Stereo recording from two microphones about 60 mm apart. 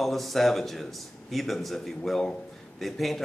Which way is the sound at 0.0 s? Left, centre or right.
Centre.